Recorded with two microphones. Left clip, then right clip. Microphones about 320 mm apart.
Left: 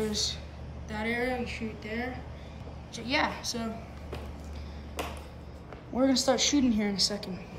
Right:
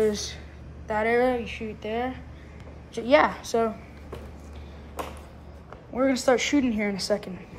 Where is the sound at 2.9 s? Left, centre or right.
Centre.